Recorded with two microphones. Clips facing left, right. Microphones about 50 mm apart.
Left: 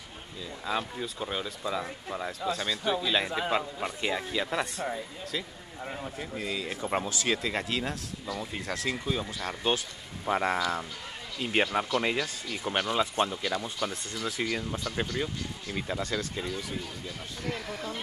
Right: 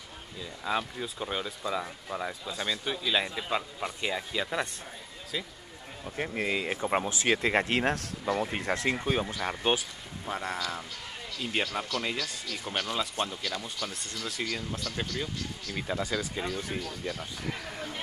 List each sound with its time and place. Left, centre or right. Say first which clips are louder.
0.7 s speech: right 1 dB; centre
6.1 s speech: right 7 dB; right
6.8 s speech: right 2 dB; centre
9.2 s speech: right 2 dB; centre
10.3 s speech: left 7 dB; left
11.3 s speech: left 4 dB; left
16.0 s speech: even; centre
17.5 s speech: left 3 dB; centre